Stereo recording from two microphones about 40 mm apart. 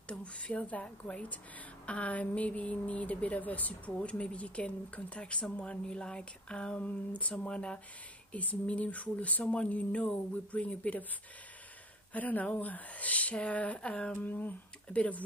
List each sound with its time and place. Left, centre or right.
0.2 s speech: left
0.6 s a woman's voice: left
12.1 s a woman's voice: left
14.1 s a sound: left
14.9 s a woman's voice: left